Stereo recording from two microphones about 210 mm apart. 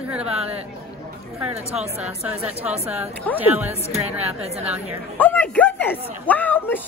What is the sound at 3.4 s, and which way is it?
Speech, 10° right (ahead or behind).